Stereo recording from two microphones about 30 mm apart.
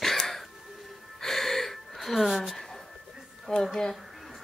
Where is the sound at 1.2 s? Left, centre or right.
Centre.